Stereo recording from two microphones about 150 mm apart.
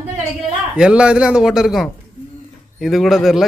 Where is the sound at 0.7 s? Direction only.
5° right (ahead or behind).